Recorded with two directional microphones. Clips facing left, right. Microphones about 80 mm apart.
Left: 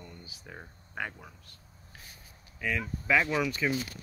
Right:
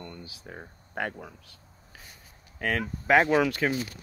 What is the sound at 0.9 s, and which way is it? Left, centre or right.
Speech, right.